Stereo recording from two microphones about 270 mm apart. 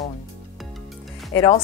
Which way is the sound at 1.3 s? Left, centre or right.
Left.